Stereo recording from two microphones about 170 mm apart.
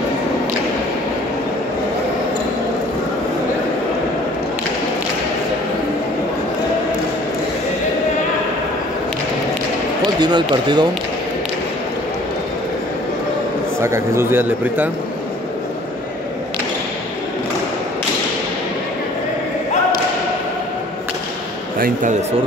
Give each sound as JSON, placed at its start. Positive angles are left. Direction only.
{"t": 10.2, "sound": "speech", "side_deg": -25}
{"t": 13.7, "sound": "a man's voice", "side_deg": -15}
{"t": 21.7, "sound": "speech", "side_deg": -55}